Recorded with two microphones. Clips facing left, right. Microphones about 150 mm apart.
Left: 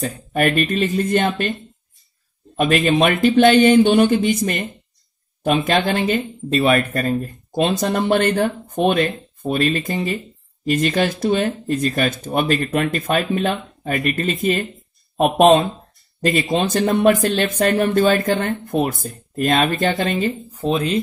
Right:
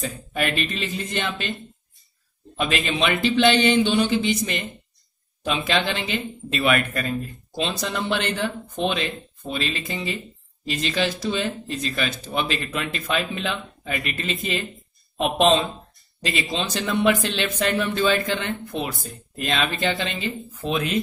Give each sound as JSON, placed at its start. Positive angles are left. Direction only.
{"t": 0.0, "sound": "speech", "side_deg": 50}
{"t": 2.5, "sound": "speech", "side_deg": 50}
{"t": 20.6, "sound": "speech", "side_deg": 35}